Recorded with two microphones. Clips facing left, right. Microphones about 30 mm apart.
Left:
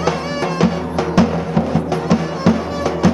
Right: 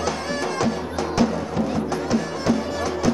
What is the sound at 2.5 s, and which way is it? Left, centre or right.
Music, left.